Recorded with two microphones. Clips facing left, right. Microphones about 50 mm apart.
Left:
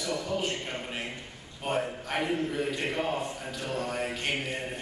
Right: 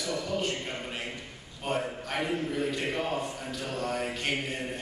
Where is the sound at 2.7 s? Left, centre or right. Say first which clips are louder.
Even; left.